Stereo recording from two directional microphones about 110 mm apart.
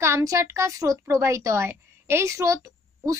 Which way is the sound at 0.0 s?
30° right (ahead or behind).